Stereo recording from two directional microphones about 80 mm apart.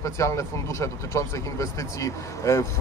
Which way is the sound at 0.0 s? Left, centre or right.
Left.